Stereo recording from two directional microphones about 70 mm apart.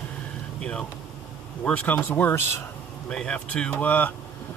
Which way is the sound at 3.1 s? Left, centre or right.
Centre.